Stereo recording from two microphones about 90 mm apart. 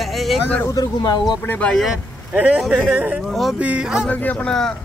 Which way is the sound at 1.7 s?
5° right (ahead or behind).